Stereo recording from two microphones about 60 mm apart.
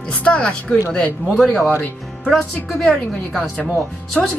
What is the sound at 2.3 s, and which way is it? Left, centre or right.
Speech, centre.